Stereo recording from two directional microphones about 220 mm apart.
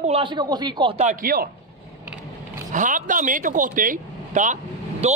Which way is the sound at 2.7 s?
35° right (ahead or behind).